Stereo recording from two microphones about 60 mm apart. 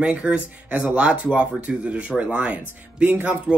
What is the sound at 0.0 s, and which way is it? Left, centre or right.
Speech, centre.